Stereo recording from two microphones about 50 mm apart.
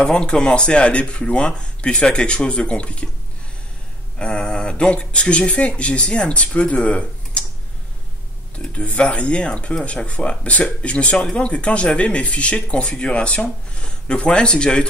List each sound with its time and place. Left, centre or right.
0.5 s speech: centre
4.2 s speech: left
8.7 s speech: left